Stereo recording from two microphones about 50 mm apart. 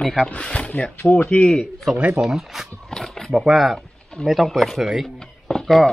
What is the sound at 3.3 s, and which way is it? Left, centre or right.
Speech, centre.